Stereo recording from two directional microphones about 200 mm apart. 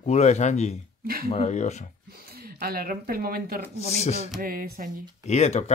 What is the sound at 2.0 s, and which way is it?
Speech, 50° right (ahead or behind).